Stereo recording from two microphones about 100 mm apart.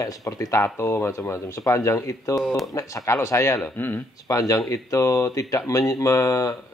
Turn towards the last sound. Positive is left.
turn(degrees=30)  # may be behind; listen again after turning